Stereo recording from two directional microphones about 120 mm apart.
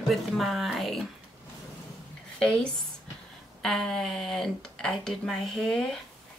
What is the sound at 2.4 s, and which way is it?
Speech, 5° left (ahead or behind).